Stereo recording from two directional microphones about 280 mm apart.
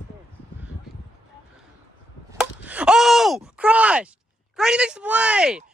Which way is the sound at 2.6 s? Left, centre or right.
Centre.